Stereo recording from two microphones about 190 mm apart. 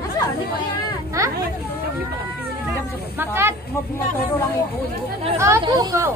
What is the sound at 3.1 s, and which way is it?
Speech, 10° right (ahead or behind).